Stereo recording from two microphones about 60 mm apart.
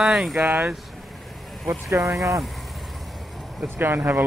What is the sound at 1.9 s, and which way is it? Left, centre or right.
Speech, right.